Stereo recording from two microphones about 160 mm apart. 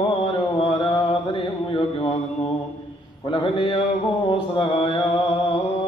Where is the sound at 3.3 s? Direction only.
30° left (ahead or behind).